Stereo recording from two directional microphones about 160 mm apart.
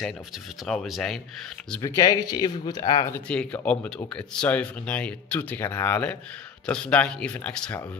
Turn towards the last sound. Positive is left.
turn(degrees=10)  # may be behind; listen again after turning